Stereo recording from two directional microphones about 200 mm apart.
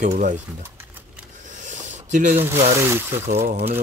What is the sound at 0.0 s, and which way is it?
Speech, 40° right (ahead or behind).